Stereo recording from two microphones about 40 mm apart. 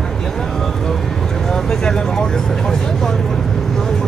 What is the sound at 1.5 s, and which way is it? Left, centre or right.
Speech, centre.